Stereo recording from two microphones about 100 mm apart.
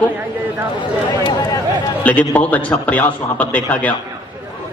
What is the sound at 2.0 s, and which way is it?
A man's voice, 15° left (ahead or behind).